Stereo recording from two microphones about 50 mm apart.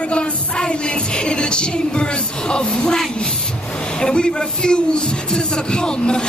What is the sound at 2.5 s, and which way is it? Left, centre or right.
Speech, centre.